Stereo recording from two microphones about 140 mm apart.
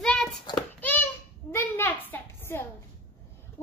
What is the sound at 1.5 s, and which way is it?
Child singing, 15° left (ahead or behind).